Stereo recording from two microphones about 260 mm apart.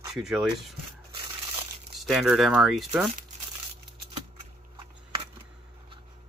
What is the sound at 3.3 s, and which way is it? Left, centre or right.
Crumpling, right.